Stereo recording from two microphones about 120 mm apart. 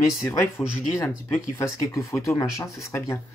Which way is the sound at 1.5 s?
25° left (ahead or behind).